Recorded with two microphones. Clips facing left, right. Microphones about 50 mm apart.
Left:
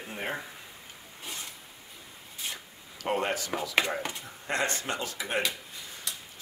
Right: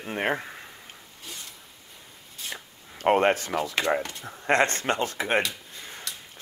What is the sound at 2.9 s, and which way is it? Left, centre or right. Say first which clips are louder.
Speech: right 8 dB; right.